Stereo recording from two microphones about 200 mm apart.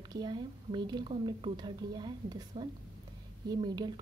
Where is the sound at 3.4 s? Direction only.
20° right (ahead or behind).